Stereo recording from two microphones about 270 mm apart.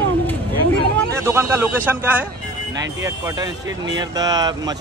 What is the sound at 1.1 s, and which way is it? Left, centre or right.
Speech, centre.